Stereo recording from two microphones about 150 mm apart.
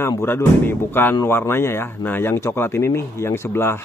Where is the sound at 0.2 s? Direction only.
15° left (ahead or behind).